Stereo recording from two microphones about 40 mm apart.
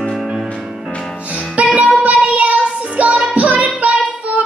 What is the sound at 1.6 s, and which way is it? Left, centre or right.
Music, right.